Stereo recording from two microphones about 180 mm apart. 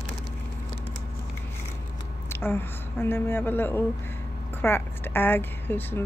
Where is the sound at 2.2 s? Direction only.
10° left (ahead or behind).